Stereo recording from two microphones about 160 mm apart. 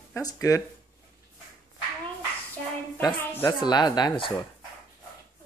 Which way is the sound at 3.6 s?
25° left (ahead or behind).